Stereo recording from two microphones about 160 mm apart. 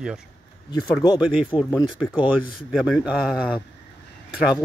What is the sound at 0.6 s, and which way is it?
Speech, 25° left (ahead or behind).